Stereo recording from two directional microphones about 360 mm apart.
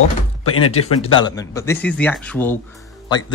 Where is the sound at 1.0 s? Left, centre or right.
Centre.